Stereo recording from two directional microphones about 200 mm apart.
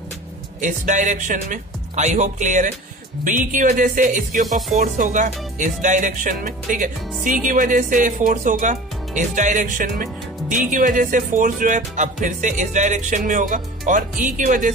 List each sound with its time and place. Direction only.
0.6 s speech: 40° right (ahead or behind)